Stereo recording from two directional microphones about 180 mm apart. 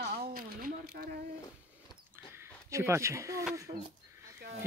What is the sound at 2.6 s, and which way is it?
Speech, 15° right (ahead or behind).